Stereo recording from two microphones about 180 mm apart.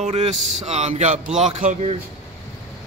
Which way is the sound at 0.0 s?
35° right (ahead or behind).